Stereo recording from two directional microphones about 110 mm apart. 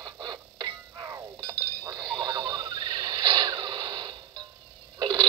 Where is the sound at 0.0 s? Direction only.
40° right (ahead or behind).